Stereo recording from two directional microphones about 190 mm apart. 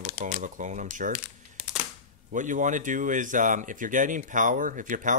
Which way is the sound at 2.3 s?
40° right (ahead or behind).